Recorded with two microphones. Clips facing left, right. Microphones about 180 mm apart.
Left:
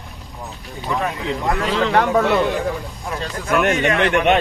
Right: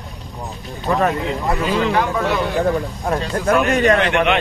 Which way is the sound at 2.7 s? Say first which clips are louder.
Right 7 dB; 55° right (ahead or behind).